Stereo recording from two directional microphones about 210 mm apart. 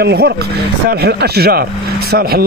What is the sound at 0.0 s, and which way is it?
Speech, 50° right (ahead or behind).